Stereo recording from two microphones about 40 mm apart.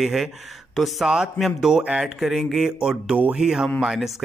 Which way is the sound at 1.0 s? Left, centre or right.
Centre.